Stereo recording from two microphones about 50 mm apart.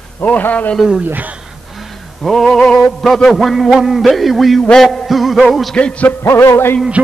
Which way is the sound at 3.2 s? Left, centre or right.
Centre.